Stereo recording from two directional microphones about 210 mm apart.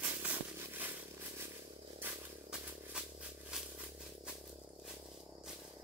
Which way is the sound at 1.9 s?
10° right (ahead or behind).